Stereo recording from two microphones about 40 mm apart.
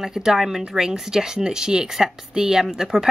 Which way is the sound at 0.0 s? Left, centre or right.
Centre.